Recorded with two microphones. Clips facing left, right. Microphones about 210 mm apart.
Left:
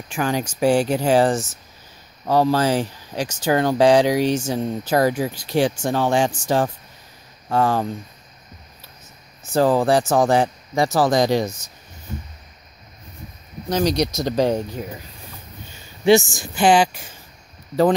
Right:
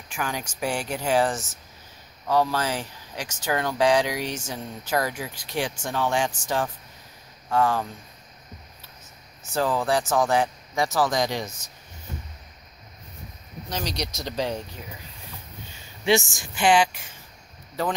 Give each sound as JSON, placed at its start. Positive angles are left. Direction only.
{"t": 0.1, "sound": "speech", "side_deg": 30}
{"t": 9.5, "sound": "speech", "side_deg": 35}
{"t": 13.7, "sound": "speech", "side_deg": 45}
{"t": 16.1, "sound": "speech", "side_deg": 35}